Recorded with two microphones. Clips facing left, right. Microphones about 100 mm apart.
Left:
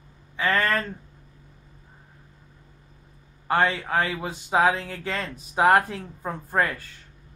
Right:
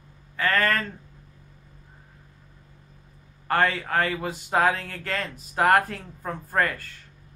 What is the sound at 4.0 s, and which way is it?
Speech, 10° left (ahead or behind).